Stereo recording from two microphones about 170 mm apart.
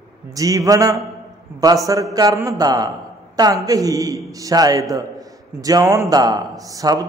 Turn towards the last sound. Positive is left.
turn(degrees=-20)  # may be behind; listen again after turning